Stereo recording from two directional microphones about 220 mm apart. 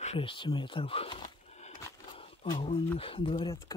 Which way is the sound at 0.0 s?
25° left (ahead or behind).